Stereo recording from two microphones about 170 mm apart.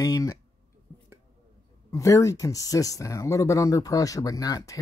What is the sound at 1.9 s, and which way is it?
Speech, 20° left (ahead or behind).